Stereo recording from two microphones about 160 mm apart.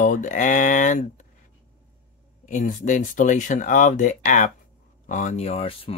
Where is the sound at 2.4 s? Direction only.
55° left (ahead or behind).